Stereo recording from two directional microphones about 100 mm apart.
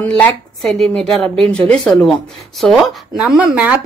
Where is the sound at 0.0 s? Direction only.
15° left (ahead or behind).